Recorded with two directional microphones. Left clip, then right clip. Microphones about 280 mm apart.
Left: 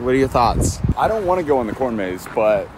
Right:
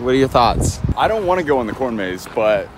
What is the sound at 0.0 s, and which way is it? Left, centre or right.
Speech, centre.